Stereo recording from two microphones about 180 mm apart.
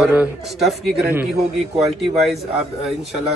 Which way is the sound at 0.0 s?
5° right (ahead or behind).